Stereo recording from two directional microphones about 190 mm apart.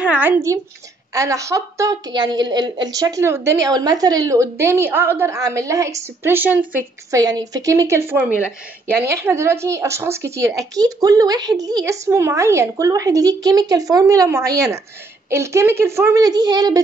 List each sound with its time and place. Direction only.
0.0 s a woman's voice: 10° right (ahead or behind)